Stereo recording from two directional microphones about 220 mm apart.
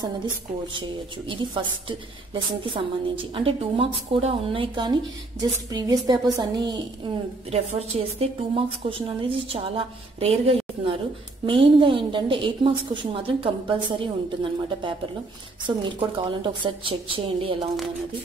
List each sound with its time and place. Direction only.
0.7 s a woman's voice: 20° right (ahead or behind)